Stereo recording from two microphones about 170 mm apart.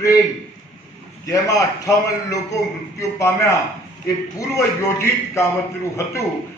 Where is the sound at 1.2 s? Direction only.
20° left (ahead or behind).